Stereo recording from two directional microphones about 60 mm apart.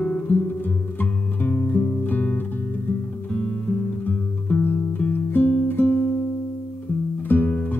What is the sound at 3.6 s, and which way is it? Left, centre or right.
Music, left.